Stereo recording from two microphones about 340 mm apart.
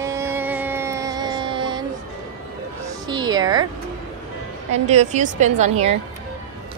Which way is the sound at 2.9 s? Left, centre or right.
Centre.